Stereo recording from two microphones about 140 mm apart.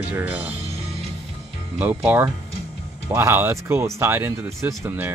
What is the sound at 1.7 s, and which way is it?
Speech, 10° right (ahead or behind).